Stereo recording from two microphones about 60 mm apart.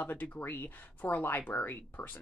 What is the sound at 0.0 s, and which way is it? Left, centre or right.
Speech, left.